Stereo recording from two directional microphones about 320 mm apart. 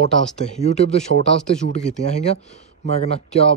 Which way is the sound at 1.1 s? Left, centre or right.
Right.